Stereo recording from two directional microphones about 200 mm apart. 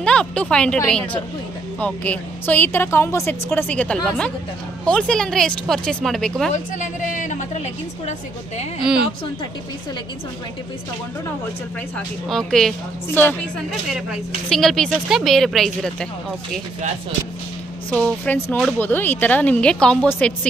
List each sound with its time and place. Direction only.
0.0 s a woman's voice: 5° left (ahead or behind)
6.5 s a sound: 40° left (ahead or behind)
12.3 s a woman's voice: centre (ahead or behind)
17.9 s a woman's voice: 5° left (ahead or behind)